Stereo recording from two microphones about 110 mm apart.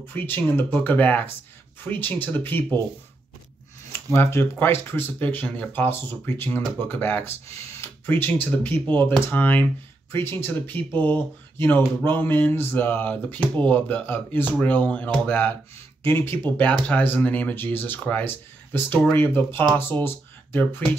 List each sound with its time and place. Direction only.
0.1 s speech: 20° left (ahead or behind)
4.1 s speech: 20° left (ahead or behind)